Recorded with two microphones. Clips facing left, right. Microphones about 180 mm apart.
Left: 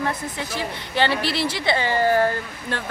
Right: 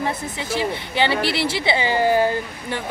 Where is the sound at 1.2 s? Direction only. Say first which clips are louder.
Right 2 dB; 60° right (ahead or behind).